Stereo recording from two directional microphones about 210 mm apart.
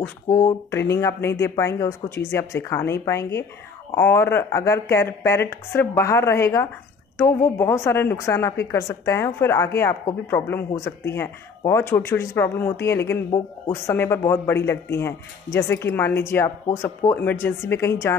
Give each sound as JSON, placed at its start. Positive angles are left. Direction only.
{"t": 0.0, "sound": "a woman's voice", "side_deg": 15}